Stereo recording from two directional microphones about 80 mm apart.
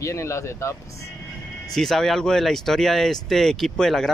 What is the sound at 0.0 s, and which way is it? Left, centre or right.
Speech, left.